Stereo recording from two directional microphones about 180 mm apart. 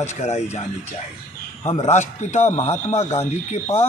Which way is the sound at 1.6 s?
35° left (ahead or behind).